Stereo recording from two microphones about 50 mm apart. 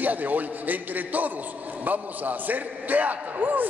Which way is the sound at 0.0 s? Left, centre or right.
Right.